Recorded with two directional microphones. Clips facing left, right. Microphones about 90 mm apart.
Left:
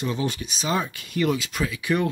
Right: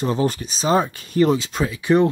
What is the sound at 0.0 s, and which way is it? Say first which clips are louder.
Speech: right 6 dB; 40° right (ahead or behind).